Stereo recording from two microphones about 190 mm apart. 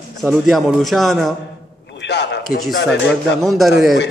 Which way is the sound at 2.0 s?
65° left (ahead or behind).